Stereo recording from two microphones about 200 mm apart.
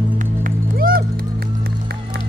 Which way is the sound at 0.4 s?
45° right (ahead or behind).